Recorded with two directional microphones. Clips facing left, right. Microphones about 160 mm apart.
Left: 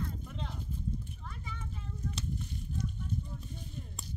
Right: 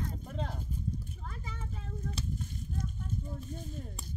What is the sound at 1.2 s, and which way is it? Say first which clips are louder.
Vehicle: right 1 dB; 40° right (ahead or behind).